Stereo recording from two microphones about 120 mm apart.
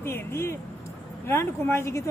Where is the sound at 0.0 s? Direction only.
20° left (ahead or behind).